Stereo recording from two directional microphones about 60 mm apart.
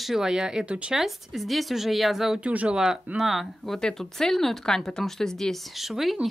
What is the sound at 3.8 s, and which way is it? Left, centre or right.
Speech, centre.